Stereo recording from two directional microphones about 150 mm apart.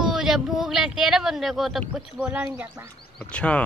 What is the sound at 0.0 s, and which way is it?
Speech, 5° right (ahead or behind).